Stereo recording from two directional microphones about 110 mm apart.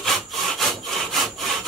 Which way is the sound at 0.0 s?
Centre (ahead or behind).